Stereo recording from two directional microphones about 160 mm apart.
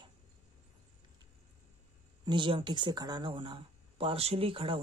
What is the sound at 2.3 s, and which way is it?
Speech, 30° right (ahead or behind).